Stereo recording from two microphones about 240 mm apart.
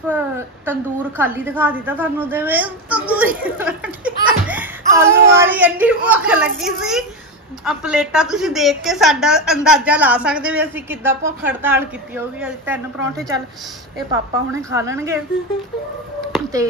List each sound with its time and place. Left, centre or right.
0.7 s a woman's voice: centre
14.5 s a woman's voice: centre